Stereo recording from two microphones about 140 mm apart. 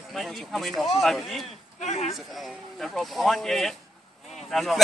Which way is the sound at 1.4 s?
55° left (ahead or behind).